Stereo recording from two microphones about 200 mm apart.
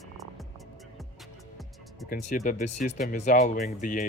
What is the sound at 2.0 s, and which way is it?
Speech, 40° left (ahead or behind).